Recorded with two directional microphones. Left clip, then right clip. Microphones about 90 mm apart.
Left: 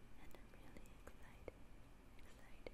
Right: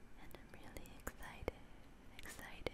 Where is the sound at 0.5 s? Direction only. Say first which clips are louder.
Right 7 dB; 15° right (ahead or behind).